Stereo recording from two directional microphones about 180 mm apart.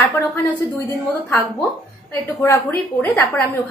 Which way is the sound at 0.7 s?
10° left (ahead or behind).